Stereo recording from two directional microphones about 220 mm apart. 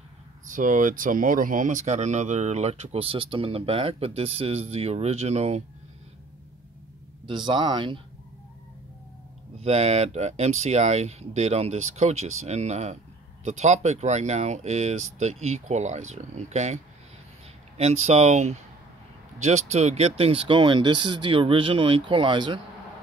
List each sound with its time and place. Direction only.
0.5 s speech: 35° right (ahead or behind)
7.2 s speech: 20° right (ahead or behind)
9.6 s speech: 30° right (ahead or behind)